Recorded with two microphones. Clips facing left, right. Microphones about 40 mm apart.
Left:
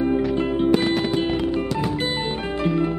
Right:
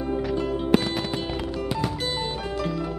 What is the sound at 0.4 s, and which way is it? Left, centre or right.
Music, left.